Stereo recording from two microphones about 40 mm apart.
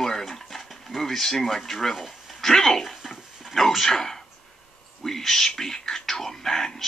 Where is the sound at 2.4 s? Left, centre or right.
Centre.